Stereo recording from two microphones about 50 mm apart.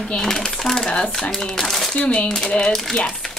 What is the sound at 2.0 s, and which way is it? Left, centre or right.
Speech, left.